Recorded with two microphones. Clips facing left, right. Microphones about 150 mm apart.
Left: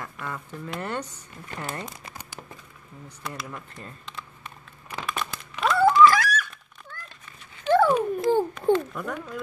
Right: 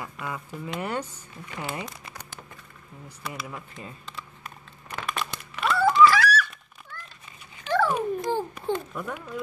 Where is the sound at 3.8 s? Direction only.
5° right (ahead or behind).